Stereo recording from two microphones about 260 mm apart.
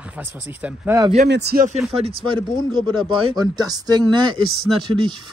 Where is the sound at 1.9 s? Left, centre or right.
Right.